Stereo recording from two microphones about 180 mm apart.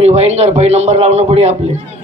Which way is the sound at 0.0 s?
35° right (ahead or behind).